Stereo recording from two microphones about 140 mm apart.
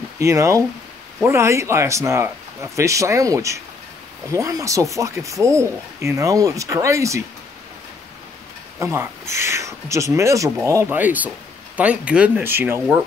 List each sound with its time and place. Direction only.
0.2 s speech: 20° right (ahead or behind)
8.7 s speech: 20° right (ahead or behind)